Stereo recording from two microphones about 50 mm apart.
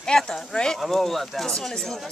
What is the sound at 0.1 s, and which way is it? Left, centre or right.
Speech, centre.